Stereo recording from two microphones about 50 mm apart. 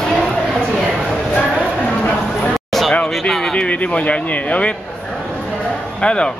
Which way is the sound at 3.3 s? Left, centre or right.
Centre.